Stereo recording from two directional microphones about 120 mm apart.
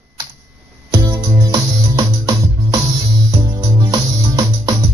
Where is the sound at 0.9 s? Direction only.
30° right (ahead or behind).